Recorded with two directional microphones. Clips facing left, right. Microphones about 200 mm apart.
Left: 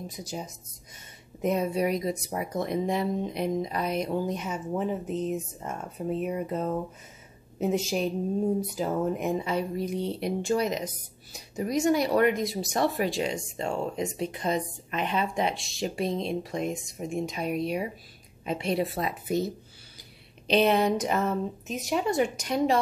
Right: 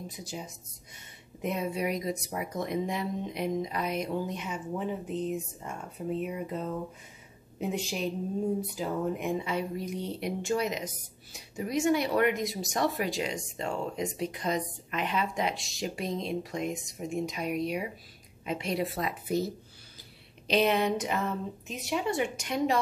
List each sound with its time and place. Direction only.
0.1 s a woman's voice: 40° left (ahead or behind); by 19.5 s 20° left (ahead or behind)
20.4 s speech: 30° left (ahead or behind)